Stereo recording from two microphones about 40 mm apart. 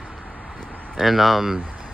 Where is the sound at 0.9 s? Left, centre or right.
Centre.